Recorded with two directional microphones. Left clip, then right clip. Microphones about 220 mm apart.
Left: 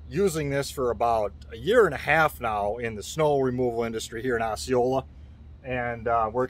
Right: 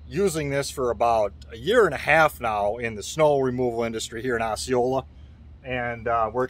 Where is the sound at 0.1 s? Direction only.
15° right (ahead or behind).